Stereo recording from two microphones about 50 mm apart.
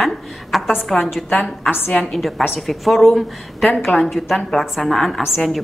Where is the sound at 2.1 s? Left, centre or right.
Centre.